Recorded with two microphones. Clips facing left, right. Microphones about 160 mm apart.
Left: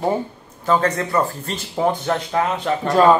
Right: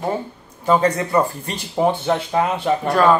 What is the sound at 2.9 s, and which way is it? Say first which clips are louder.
Speech: left 2 dB; 20° left (ahead or behind).